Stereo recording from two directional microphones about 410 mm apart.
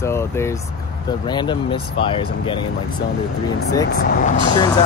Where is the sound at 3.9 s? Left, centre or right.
Left.